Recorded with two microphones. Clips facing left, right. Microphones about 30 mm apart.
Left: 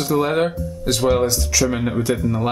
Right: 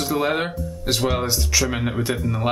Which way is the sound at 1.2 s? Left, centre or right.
Centre.